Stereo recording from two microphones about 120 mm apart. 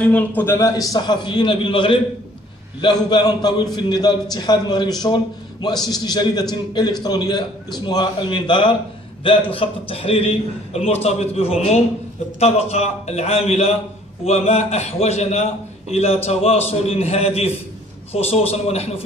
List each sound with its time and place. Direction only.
0.0 s a man's voice: 10° left (ahead or behind); by 19.0 s 60° left (ahead or behind)